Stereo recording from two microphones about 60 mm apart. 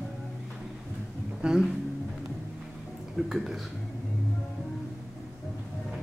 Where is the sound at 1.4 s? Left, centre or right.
Centre.